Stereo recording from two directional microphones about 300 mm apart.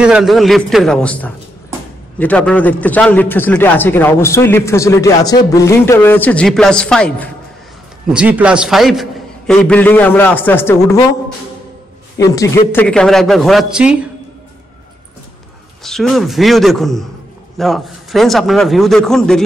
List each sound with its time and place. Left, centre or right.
0.0 s a man's voice: centre
12.2 s a man's voice: centre
15.8 s a man's voice: centre